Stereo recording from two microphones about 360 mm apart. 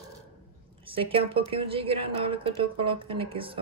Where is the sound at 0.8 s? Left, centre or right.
Centre.